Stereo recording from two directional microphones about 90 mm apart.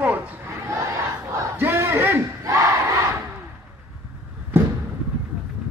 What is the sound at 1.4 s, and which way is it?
Battle cry, 25° right (ahead or behind).